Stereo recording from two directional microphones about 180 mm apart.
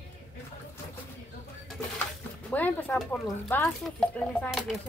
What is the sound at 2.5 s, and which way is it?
Speech, 10° left (ahead or behind).